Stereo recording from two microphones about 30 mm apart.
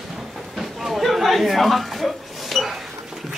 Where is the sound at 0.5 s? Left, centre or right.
Centre.